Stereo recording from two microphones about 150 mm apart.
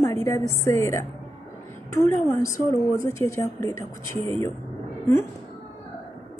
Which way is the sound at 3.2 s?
20° left (ahead or behind).